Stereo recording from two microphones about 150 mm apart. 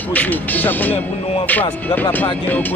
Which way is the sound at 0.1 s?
10° left (ahead or behind).